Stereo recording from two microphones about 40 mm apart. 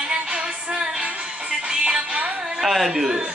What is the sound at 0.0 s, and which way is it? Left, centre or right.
Music, right.